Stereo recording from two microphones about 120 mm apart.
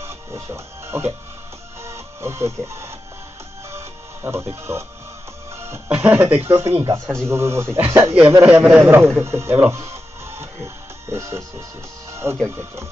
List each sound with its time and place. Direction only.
0.0 s music: 20° right (ahead or behind)
5.9 s a man's voice: 15° right (ahead or behind)
8.5 s a man's voice: 10° right (ahead or behind)
9.7 s music: 25° right (ahead or behind)
12.4 s a man's voice: 20° right (ahead or behind)